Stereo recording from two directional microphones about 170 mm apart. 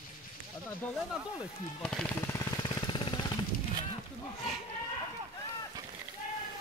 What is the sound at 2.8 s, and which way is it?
Jackhammer, 30° left (ahead or behind).